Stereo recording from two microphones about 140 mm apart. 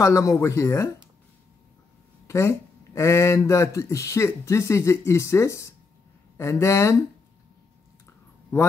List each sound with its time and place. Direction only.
0.0 s speech: 20° left (ahead or behind)
2.2 s speech: 20° left (ahead or behind)